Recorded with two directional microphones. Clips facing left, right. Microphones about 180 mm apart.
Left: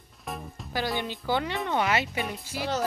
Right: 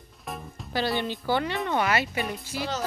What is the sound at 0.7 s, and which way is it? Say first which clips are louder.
A child's voice: right 3 dB; 15° left (ahead or behind).